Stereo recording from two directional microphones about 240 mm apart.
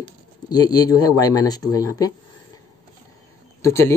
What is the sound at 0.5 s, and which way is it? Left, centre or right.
Speech, centre.